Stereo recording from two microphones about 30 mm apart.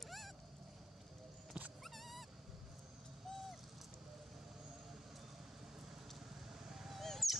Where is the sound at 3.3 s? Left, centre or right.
Centre.